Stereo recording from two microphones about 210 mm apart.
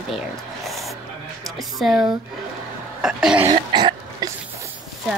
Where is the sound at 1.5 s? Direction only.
Centre (ahead or behind).